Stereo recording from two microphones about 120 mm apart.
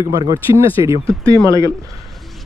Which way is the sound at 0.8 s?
30° right (ahead or behind).